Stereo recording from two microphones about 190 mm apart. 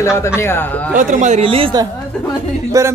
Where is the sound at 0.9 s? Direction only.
40° right (ahead or behind).